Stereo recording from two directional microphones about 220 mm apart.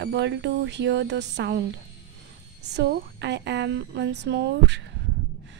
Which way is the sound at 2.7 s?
50° right (ahead or behind).